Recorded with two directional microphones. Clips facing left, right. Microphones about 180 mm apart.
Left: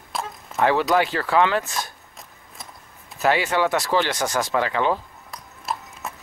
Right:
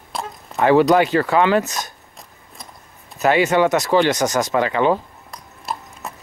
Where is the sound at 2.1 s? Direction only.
Centre (ahead or behind).